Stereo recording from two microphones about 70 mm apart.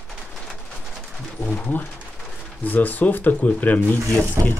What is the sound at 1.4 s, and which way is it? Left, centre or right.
Speech, left.